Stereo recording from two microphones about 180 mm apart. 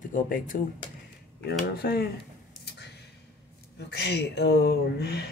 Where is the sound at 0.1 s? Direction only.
50° left (ahead or behind).